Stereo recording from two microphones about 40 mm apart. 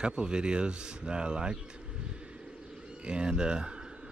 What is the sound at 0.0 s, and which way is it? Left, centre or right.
Speech, right.